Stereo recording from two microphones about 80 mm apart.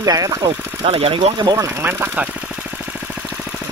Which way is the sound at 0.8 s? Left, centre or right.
Right.